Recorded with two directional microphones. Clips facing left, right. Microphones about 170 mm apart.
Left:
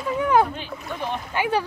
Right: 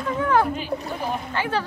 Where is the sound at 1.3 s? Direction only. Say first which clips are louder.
Left 5 dB; 15° left (ahead or behind).